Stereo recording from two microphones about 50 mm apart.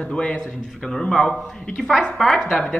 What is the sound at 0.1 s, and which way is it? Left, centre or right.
A man's voice, left.